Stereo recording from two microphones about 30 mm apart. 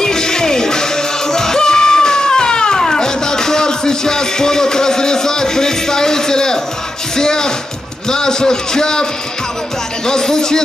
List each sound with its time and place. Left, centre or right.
0.0 s music: left
7.2 s a man's voice: left
10.0 s a man's voice: centre